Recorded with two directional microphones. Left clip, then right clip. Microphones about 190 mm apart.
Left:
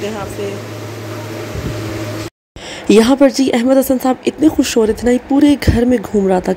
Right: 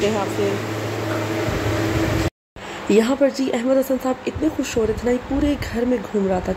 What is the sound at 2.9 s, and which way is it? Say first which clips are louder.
Speech: left 7 dB; 50° left (ahead or behind).